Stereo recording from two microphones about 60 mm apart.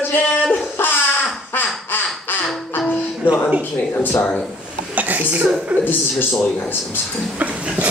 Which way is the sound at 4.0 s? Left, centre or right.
Left.